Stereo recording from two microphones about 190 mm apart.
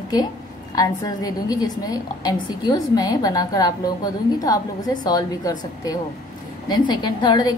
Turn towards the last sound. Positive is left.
turn(degrees=20)  # may be behind; listen again after turning